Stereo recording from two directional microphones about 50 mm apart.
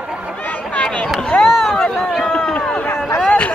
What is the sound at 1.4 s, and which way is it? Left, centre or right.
Run, centre.